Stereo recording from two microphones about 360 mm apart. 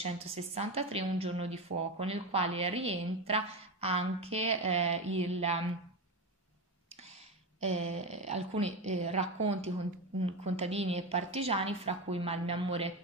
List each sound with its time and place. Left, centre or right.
0.0 s a woman's voice: centre
7.6 s a woman's voice: centre